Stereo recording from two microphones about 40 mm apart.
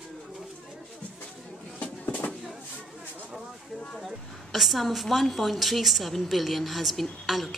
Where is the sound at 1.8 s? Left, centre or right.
Left.